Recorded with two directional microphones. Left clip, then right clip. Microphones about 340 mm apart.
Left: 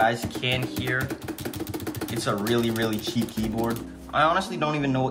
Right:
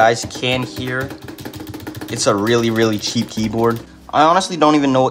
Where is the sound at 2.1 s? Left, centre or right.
Centre.